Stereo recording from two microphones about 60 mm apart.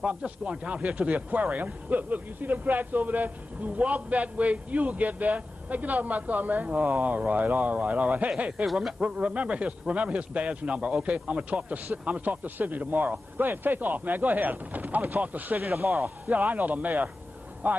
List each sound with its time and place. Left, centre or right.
0.0 s speech: centre
15.6 s speech: right
16.3 s speech: right